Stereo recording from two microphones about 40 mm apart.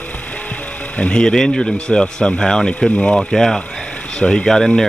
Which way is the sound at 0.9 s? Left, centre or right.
Left.